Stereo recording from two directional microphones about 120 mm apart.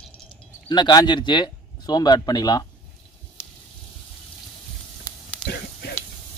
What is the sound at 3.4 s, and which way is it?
Water, 20° left (ahead or behind).